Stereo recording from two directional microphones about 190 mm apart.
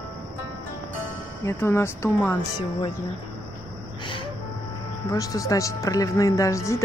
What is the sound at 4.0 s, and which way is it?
Gasp, 25° left (ahead or behind).